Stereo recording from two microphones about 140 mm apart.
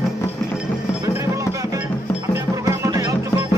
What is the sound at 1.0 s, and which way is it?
Music, 20° right (ahead or behind).